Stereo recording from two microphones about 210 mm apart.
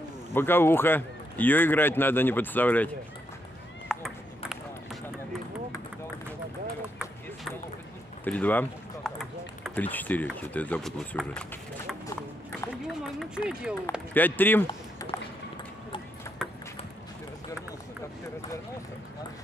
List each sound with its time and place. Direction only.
0.3 s speech: 10° left (ahead or behind)
3.9 s ping: centre (ahead or behind)
8.2 s speech: 5° left (ahead or behind)
12.5 s run: centre (ahead or behind)
14.1 s speech: 10° left (ahead or behind)
14.7 s a sound: 15° left (ahead or behind)
16.3 s a sound: 15° left (ahead or behind)